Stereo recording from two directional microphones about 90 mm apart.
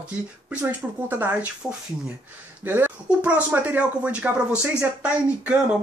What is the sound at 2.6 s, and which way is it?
Speech, 20° right (ahead or behind).